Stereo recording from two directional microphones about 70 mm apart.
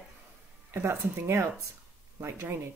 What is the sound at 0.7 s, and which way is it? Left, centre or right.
Speech, right.